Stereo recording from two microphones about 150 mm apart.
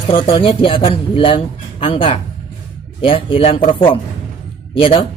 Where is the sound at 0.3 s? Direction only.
35° left (ahead or behind).